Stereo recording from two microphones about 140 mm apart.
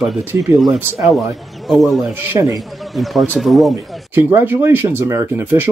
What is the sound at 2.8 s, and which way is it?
Speech, centre (ahead or behind).